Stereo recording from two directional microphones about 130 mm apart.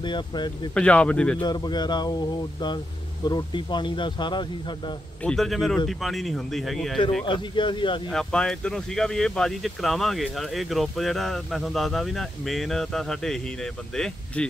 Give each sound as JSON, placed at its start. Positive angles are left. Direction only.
{"t": 0.0, "sound": "speech", "side_deg": 35}
{"t": 0.7, "sound": "speech", "side_deg": 10}
{"t": 1.4, "sound": "speech", "side_deg": 35}
{"t": 5.2, "sound": "speech", "side_deg": 5}
{"t": 7.2, "sound": "speech", "side_deg": 35}
{"t": 8.1, "sound": "speech", "side_deg": 5}